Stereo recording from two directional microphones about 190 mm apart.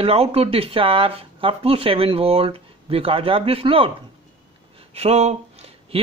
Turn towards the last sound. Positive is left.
turn(degrees=-30)  # may be behind; listen again after turning